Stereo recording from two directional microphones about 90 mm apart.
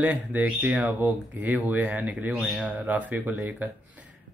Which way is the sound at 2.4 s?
5° right (ahead or behind).